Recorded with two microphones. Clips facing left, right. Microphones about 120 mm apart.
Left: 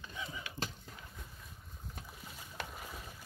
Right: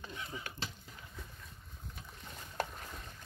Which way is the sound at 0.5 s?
45° right (ahead or behind).